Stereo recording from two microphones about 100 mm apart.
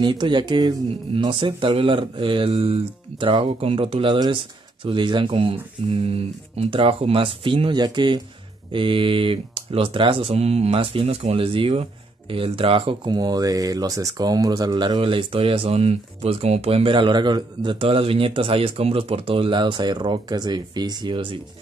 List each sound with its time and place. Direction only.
0.0 s speech: 50° right (ahead or behind)
1.1 s speech: 60° right (ahead or behind)
4.8 s speech: 55° right (ahead or behind)
13.1 s speech: 40° right (ahead or behind)
17.7 s speech: 70° right (ahead or behind)